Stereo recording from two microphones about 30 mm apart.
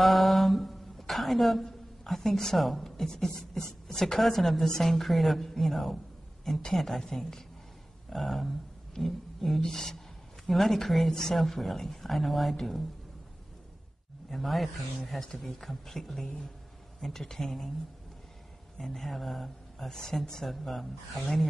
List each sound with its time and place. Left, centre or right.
0.0 s a sound: centre
2.5 s a woman's voice: centre
3.3 s beatboxing: left
4.2 s a woman's voice: centre
14.3 s a woman's voice: centre
18.9 s a woman's voice: centre
20.4 s a woman's voice: centre